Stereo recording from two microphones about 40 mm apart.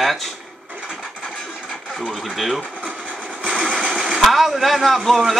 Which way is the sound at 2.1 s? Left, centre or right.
Centre.